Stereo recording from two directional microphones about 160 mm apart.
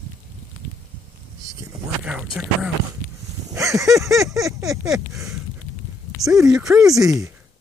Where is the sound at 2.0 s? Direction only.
5° right (ahead or behind).